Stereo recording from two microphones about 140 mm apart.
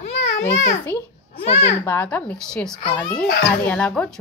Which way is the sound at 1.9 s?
10° left (ahead or behind).